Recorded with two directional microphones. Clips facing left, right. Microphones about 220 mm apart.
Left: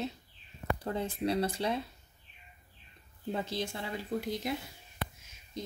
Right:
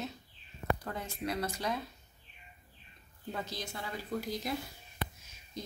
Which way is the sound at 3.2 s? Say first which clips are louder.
Left 5 dB; 25° left (ahead or behind).